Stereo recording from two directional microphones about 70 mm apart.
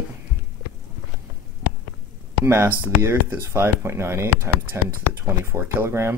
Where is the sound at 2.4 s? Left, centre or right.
Right.